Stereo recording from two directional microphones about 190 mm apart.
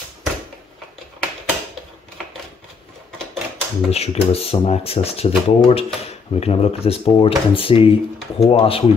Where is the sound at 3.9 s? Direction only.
30° left (ahead or behind).